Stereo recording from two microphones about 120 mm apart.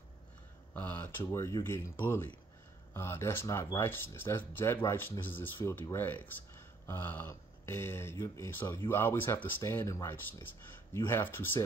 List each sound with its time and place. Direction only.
0.7 s speech: 15° left (ahead or behind)